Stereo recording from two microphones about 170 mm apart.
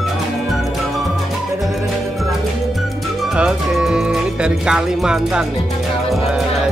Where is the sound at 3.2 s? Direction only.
5° right (ahead or behind).